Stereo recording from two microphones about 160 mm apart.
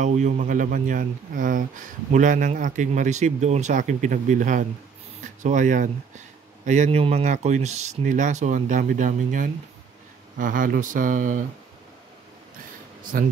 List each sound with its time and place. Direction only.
0.0 s speech: 50° right (ahead or behind)
13.1 s speech: 60° right (ahead or behind)